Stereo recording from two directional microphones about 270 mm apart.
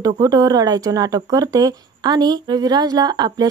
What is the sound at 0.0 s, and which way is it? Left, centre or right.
Speech, centre.